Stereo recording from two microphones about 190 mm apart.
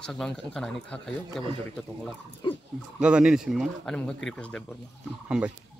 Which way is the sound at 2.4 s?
25° left (ahead or behind).